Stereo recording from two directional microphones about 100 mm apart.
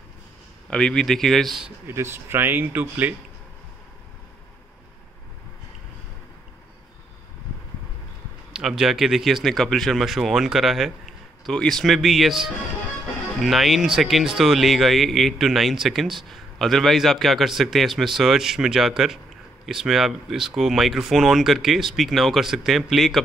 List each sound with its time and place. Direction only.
0.7 s speech: 10° left (ahead or behind)
1.9 s speech: 25° right (ahead or behind)
8.5 s speech: 5° right (ahead or behind)
13.4 s speech: centre (ahead or behind)